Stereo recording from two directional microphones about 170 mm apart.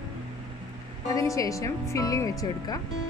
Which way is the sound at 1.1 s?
20° left (ahead or behind).